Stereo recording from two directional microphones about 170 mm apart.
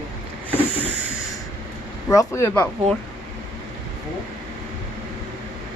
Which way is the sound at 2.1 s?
20° left (ahead or behind).